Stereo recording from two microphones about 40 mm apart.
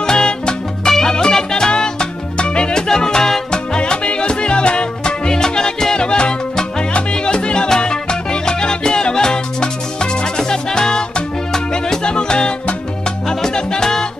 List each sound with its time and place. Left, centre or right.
0.0 s music: centre